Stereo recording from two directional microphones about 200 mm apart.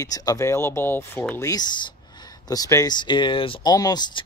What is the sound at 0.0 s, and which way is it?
Speech, 20° left (ahead or behind).